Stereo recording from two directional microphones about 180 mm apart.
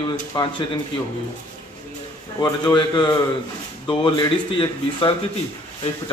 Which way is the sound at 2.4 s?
20° left (ahead or behind).